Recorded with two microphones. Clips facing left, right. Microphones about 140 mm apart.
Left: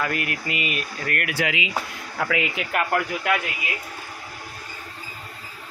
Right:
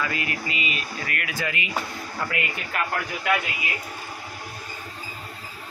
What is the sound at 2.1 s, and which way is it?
Speech, 85° left.